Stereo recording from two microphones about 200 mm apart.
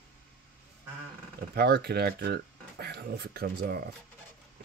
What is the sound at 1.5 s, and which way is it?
Speech, 55° right (ahead or behind).